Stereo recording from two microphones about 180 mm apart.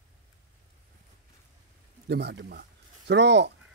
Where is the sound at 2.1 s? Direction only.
70° right (ahead or behind).